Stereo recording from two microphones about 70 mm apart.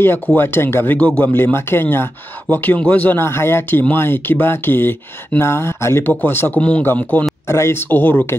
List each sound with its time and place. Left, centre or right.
0.4 s speech: left
0.9 s a man's voice: centre
1.3 s a man's voice: left
3.2 s speech: left
6.0 s a man's voice: left
7.4 s speech: left
7.9 s a man's voice: left